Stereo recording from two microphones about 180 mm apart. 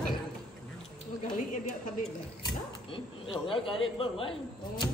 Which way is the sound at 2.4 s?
25° left (ahead or behind).